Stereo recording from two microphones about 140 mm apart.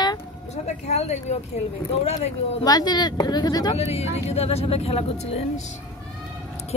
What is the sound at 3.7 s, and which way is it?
Speech, 45° left (ahead or behind).